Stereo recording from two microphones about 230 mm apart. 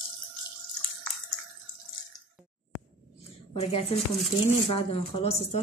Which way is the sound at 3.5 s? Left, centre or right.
Left.